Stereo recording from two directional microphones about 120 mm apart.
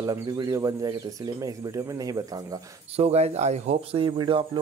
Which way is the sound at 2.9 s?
60° right (ahead or behind).